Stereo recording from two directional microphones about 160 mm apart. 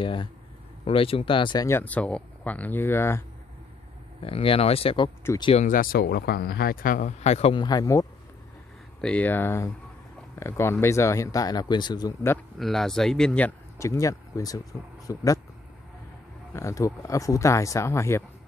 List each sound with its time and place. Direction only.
0.0 s speech: 30° left (ahead or behind)
1.7 s speech: 10° left (ahead or behind)
4.2 s speech: 35° left (ahead or behind)
5.6 s speech: 60° left (ahead or behind); by 7.6 s 40° left (ahead or behind)
7.6 s speech: 25° left (ahead or behind)
9.0 s speech: 10° left (ahead or behind); by 12.3 s 25° left (ahead or behind)
12.5 s speech: centre (ahead or behind)
13.7 s speech: 20° left (ahead or behind)
16.5 s speech: 20° left (ahead or behind)